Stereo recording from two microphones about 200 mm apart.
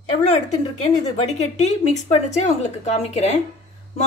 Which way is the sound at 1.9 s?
35° left (ahead or behind).